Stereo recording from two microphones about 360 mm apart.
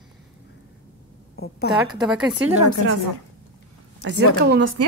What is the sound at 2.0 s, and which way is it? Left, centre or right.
Speech, centre.